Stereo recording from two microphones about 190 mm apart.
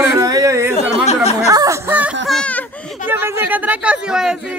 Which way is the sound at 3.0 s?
10° right (ahead or behind).